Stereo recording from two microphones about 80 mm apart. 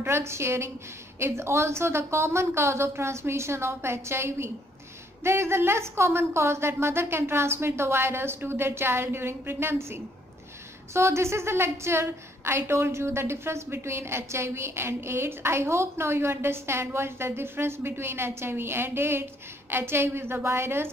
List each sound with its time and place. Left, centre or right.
0.0 s a woman's voice: right